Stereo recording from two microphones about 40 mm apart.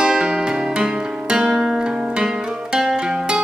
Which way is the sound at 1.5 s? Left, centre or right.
Centre.